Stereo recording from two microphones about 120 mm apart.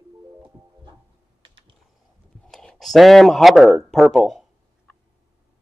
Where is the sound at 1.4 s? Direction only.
45° right (ahead or behind).